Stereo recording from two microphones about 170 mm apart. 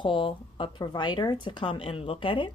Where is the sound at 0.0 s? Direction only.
30° left (ahead or behind).